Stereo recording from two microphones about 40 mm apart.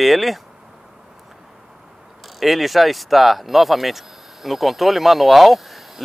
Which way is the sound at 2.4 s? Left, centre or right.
Centre.